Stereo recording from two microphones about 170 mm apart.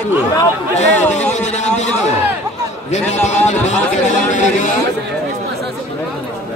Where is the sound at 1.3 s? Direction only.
45° left (ahead or behind).